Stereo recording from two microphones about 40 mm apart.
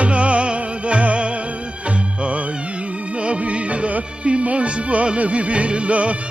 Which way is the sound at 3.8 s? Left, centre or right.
Right.